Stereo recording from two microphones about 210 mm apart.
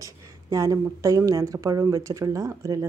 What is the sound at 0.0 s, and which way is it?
A woman's voice, 15° right (ahead or behind).